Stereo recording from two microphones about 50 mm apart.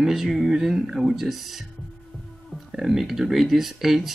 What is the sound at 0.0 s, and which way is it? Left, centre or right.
Speech, centre.